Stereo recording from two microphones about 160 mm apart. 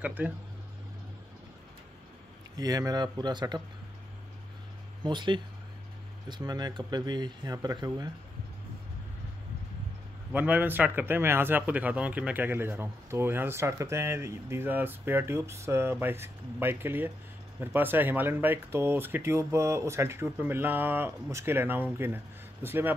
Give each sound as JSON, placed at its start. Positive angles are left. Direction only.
{"t": 0.0, "sound": "a man's voice", "side_deg": -10}
{"t": 2.5, "sound": "speech", "side_deg": -25}
{"t": 5.0, "sound": "speech", "side_deg": -30}
{"t": 10.3, "sound": "a man's voice", "side_deg": -10}